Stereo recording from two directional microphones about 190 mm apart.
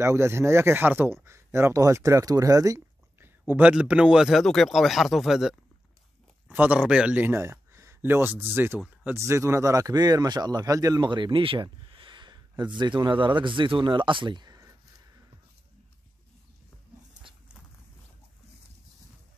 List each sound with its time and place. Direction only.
0.0 s speech: 15° right (ahead or behind)